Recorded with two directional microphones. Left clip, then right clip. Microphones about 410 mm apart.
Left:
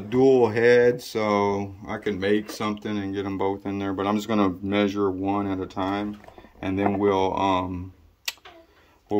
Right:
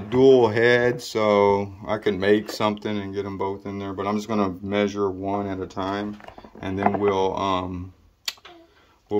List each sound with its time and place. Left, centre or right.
0.1 s speech: centre